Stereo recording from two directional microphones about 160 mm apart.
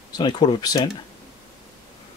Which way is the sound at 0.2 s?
30° left (ahead or behind).